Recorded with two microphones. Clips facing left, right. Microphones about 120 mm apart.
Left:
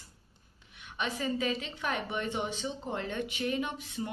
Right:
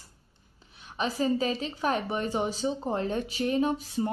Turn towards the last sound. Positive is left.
turn(degrees=-35)  # may be behind; listen again after turning